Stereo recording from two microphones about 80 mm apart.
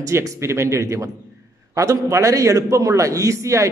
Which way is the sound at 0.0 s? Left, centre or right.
Right.